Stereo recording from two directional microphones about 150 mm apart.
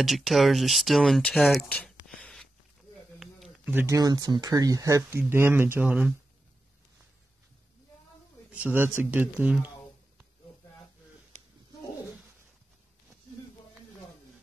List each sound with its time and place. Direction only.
0.0 s speech: centre (ahead or behind)
3.2 s a sound: centre (ahead or behind)
3.6 s speech: 15° right (ahead or behind)
8.5 s speech: 10° right (ahead or behind)